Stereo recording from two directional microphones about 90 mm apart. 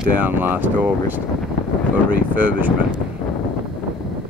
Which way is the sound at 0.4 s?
20° right (ahead or behind).